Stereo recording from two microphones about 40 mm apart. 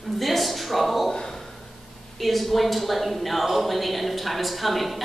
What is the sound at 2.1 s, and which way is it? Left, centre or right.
A woman's voice, centre.